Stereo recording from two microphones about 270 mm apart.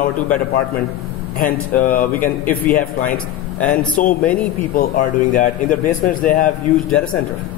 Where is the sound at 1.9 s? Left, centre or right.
Left.